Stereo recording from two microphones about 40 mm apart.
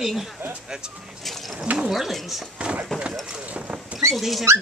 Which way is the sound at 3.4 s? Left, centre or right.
Right.